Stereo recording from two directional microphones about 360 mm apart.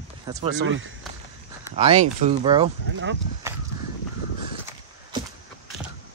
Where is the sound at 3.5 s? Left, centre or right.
Centre.